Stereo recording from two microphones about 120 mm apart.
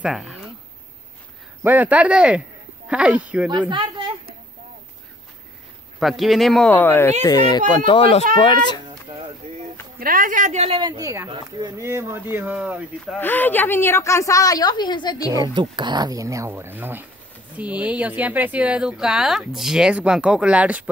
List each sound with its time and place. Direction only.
0.0 s a sound: centre (ahead or behind)
1.6 s speech: 15° right (ahead or behind)
3.7 s a sound: 40° right (ahead or behind)
5.9 s speech: centre (ahead or behind)
6.7 s speech: 15° left (ahead or behind)
7.2 s speech: 35° left (ahead or behind)
10.3 s speech: 80° right
10.7 s speech: 45° right (ahead or behind)
11.0 s speech: 25° right (ahead or behind)
11.2 s speech: 40° right (ahead or behind)
11.8 s speech: 20° right (ahead or behind)
13.2 s a woman's voice: 15° left (ahead or behind); by 15.3 s 35° left (ahead or behind)
15.3 s speech: 35° right (ahead or behind); by 20.9 s 10° right (ahead or behind)